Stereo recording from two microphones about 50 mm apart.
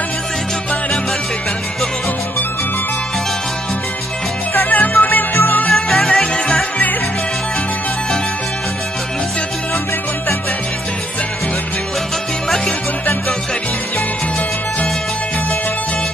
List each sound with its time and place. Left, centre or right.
4.6 s music: left
5.7 s music: centre